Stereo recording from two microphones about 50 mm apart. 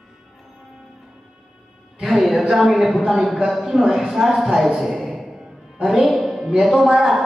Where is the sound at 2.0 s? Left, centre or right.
Centre.